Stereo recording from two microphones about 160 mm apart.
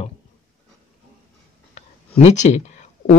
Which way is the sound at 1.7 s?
45° left (ahead or behind).